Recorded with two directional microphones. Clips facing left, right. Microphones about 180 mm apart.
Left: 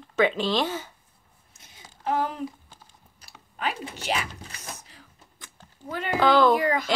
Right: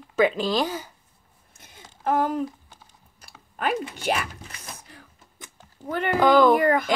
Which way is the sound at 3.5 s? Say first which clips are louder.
Right 5 dB; 55° right (ahead or behind).